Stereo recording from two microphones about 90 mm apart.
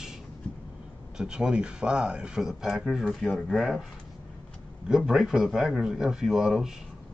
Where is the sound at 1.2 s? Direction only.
10° right (ahead or behind).